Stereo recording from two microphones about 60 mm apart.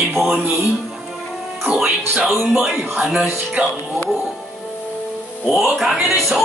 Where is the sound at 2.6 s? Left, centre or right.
Centre.